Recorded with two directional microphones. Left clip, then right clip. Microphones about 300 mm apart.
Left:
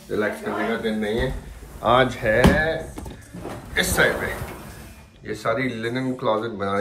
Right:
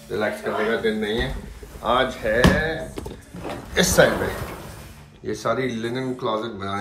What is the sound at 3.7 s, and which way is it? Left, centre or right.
Speech, centre.